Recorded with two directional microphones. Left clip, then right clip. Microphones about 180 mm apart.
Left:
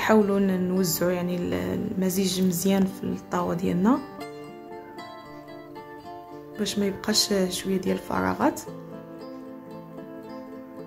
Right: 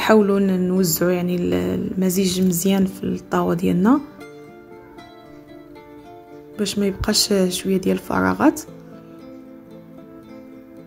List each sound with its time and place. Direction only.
0.0 s speech: 15° right (ahead or behind)
6.5 s speech: 15° right (ahead or behind)